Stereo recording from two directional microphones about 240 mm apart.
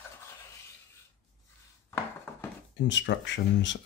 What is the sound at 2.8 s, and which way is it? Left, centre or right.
Speech, left.